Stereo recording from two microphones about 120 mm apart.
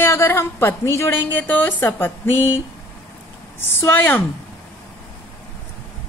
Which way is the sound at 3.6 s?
15° left (ahead or behind).